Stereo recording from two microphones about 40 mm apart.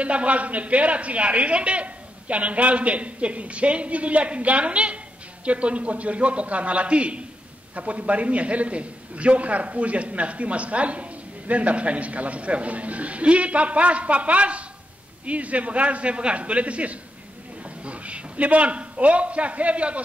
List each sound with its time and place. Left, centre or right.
0.0 s speech: right